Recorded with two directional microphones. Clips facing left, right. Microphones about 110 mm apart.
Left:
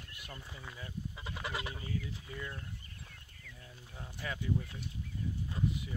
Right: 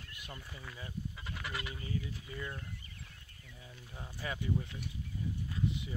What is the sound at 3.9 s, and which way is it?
Speech, 10° right (ahead or behind).